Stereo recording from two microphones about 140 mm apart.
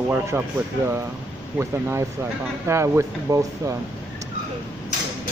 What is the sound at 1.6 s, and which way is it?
Speech, 20° right (ahead or behind).